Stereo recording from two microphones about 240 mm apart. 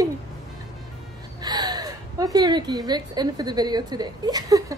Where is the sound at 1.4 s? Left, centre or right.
Centre.